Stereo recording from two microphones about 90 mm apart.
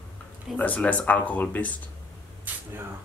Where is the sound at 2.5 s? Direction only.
20° right (ahead or behind).